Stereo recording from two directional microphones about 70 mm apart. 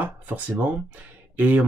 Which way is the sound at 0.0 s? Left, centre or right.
Right.